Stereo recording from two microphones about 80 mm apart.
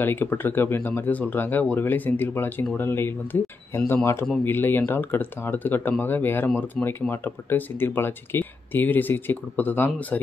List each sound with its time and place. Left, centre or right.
0.0 s speech: left